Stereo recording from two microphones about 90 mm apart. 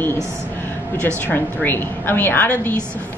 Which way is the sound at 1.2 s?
20° left (ahead or behind).